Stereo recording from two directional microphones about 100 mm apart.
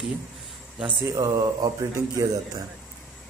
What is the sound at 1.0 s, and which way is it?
A man's voice, 35° right (ahead or behind).